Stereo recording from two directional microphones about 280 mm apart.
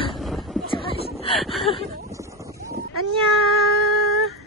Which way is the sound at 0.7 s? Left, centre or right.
Centre.